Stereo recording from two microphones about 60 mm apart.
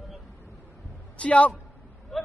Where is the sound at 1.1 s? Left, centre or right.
Left.